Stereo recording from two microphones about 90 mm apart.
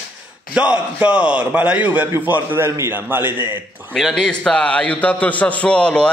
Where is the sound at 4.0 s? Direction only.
5° left (ahead or behind).